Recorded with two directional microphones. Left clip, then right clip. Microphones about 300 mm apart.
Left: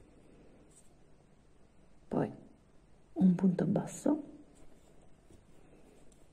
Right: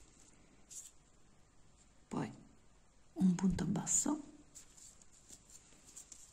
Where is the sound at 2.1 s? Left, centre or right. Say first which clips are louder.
Left 8 dB; centre.